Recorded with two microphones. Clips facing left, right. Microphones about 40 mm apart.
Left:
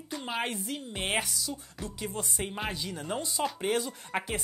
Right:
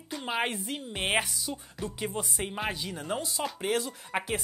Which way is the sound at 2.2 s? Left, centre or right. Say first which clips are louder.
Even; centre.